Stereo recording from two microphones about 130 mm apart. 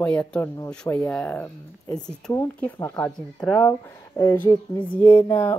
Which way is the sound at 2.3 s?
20° left (ahead or behind).